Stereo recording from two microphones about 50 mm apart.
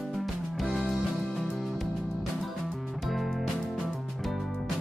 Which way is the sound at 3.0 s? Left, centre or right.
Centre.